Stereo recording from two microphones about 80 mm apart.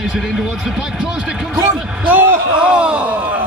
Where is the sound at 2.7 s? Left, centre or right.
Centre.